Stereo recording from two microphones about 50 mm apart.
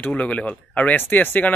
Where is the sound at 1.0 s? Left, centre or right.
Left.